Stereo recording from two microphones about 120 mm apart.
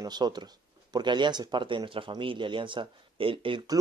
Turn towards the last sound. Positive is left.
turn(degrees=-45)  # may be behind; listen again after turning